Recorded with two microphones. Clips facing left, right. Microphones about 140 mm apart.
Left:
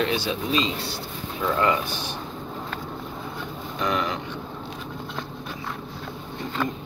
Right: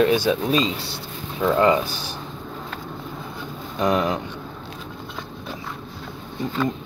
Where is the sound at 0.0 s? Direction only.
45° right (ahead or behind).